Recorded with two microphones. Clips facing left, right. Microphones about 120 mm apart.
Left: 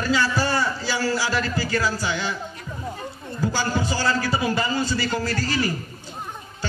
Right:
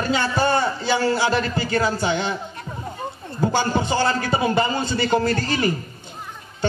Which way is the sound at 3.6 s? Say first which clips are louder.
Right 4 dB; 25° right (ahead or behind).